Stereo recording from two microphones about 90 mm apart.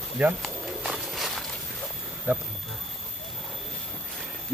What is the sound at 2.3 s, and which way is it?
Speech, 20° right (ahead or behind).